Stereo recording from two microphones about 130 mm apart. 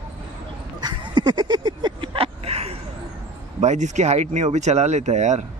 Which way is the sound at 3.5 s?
65° right (ahead or behind).